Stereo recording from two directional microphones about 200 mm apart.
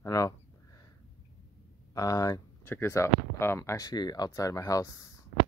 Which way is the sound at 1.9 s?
15° left (ahead or behind).